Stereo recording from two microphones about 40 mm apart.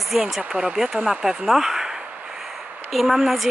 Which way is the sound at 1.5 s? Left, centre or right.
Centre.